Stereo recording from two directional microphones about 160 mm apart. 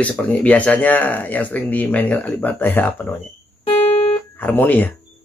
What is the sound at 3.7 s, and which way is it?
Music, 40° left (ahead or behind).